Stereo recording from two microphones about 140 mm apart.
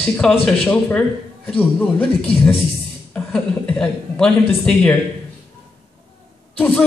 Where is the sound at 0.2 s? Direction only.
5° left (ahead or behind).